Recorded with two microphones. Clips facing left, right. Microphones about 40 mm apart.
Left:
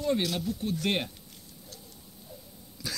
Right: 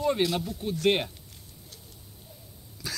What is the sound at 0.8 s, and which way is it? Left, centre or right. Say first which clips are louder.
Speech: right 7 dB; centre.